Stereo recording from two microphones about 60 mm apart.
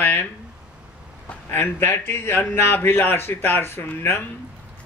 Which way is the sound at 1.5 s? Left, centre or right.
Left.